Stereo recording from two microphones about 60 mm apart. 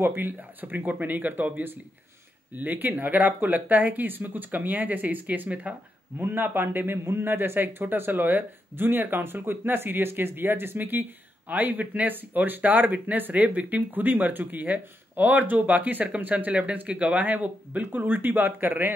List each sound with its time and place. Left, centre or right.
0.0 s speech: right